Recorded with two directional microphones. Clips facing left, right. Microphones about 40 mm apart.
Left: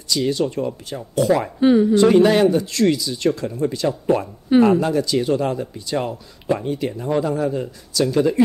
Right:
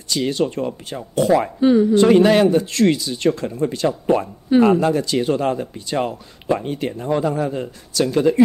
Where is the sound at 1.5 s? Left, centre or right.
Centre.